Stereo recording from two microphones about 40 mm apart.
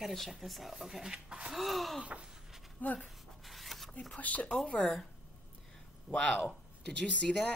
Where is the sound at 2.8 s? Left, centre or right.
Left.